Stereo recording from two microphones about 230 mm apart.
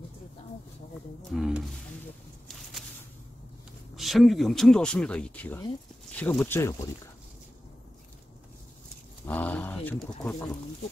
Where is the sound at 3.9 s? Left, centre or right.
Centre.